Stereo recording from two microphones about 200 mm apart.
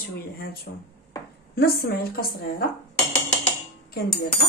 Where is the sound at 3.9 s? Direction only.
55° left (ahead or behind).